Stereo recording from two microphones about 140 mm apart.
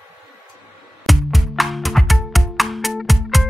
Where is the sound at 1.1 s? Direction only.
Centre (ahead or behind).